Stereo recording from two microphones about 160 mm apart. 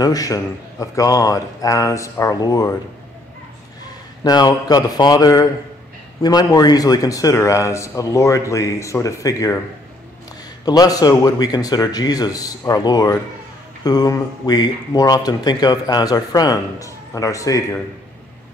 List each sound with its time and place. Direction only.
0.0 s speech: 25° left (ahead or behind)
4.2 s speech: 25° left (ahead or behind)
10.6 s speech: 25° left (ahead or behind)